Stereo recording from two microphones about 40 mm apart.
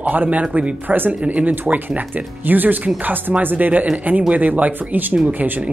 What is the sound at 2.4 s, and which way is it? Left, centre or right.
Speech, right.